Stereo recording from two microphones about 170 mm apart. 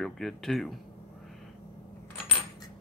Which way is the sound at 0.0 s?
5° left (ahead or behind).